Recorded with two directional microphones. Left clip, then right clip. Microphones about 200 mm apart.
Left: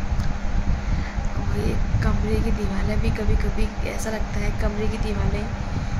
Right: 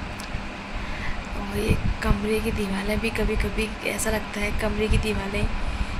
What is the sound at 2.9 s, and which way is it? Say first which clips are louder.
Speech: right 4 dB; 10° left (ahead or behind).